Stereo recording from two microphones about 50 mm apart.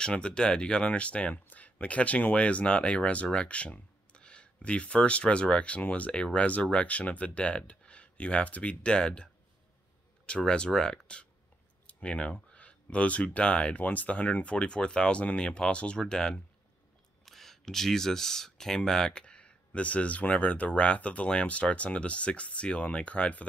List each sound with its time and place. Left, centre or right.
0.0 s speech: centre
14.5 s speech: centre